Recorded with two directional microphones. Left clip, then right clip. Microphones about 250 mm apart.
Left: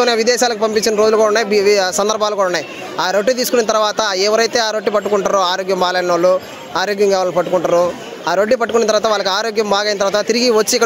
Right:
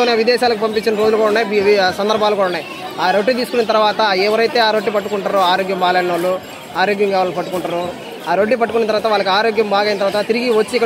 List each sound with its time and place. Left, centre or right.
0.0 s speech: left